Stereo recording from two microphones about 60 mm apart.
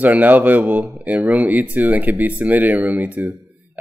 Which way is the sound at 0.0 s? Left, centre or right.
Right.